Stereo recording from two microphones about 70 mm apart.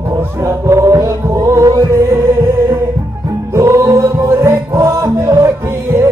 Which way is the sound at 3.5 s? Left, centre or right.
Right.